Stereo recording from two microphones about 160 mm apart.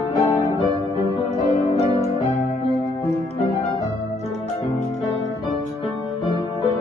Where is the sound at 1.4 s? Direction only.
40° left (ahead or behind).